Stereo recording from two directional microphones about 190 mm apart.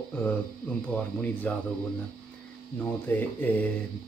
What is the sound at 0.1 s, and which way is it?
Speech, 10° left (ahead or behind).